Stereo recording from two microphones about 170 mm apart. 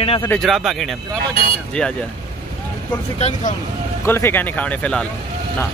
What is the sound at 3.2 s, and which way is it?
Speech, 40° left (ahead or behind).